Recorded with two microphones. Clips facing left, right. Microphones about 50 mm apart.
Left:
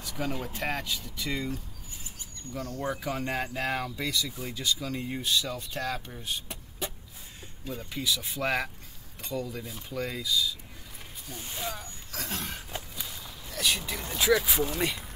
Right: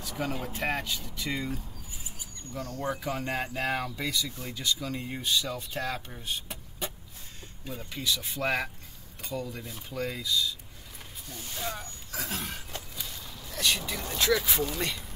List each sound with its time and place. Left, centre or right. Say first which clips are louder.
0.2 s speech: even; centre
2.8 s speech: even; centre
11.3 s speech: left 1 dB; left
11.6 s speech: right 1 dB; centre
12.1 s a sound: right 1 dB; centre
12.7 s vehicle: left 1 dB; centre